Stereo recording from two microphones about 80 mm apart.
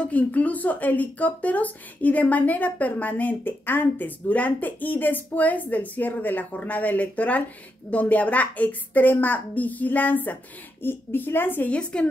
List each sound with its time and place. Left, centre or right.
0.0 s speech: centre
11.7 s a woman's voice: centre